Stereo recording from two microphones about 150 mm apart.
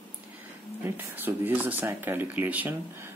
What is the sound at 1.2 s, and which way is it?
Speech, 15° right (ahead or behind).